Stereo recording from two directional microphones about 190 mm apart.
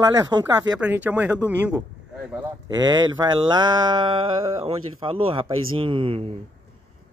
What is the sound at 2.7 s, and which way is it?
Speech, 20° right (ahead or behind).